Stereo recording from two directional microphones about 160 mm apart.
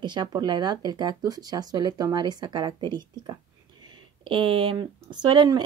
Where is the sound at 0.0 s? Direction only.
30° right (ahead or behind).